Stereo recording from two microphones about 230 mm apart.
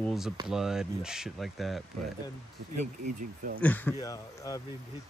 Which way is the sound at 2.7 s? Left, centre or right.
Right.